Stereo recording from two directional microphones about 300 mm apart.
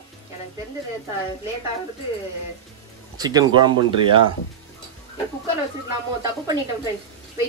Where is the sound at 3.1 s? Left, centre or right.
Centre.